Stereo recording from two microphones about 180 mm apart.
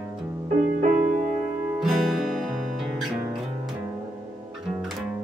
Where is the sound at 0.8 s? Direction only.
50° right (ahead or behind).